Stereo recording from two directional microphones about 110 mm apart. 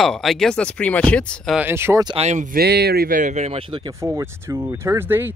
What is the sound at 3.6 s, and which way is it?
Speech, 50° right (ahead or behind).